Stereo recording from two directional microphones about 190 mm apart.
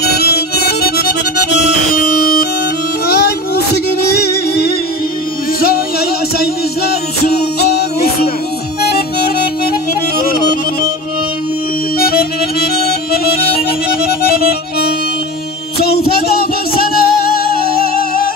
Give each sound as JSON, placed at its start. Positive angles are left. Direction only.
{"t": 0.0, "sound": "music", "side_deg": 55}
{"t": 3.1, "sound": "music", "side_deg": 55}
{"t": 12.0, "sound": "accordion", "side_deg": 50}
{"t": 15.8, "sound": "music", "side_deg": 55}